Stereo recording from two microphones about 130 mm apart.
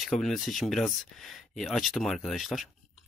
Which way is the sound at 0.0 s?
Centre (ahead or behind).